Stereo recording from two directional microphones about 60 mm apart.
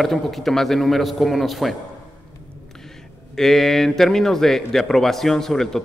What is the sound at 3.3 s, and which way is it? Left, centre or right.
A man's voice, centre.